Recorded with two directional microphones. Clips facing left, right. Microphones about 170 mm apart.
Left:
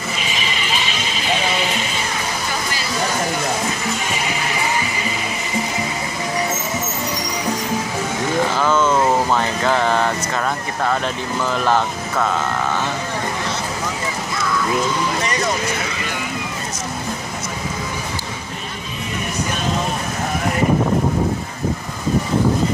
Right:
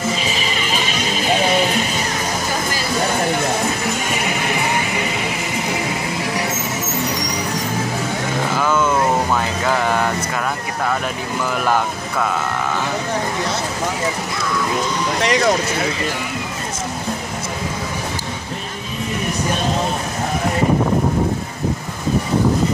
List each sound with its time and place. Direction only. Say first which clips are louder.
0.2 s music: right 3 dB; 40° right (ahead or behind)
4.3 s music: right 2 dB; 55° right (ahead or behind)
8.5 s a sound: right 1 dB; 10° right (ahead or behind)
11.5 s speech: left 1 dB; 10° right (ahead or behind)
15.2 s speech: right 5 dB; 75° right (ahead or behind)